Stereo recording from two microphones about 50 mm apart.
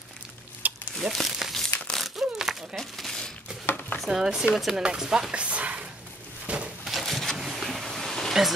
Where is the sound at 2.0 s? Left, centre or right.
Centre.